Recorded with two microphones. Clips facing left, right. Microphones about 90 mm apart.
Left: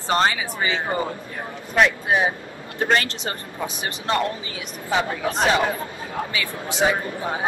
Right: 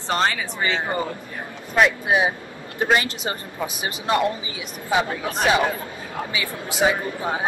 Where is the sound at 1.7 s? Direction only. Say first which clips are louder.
Even; 5° right (ahead or behind).